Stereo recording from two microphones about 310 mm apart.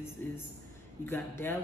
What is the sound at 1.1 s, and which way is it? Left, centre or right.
Speech, centre.